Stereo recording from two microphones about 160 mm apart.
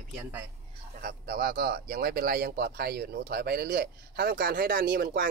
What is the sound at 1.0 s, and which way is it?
Speech, 65° right (ahead or behind).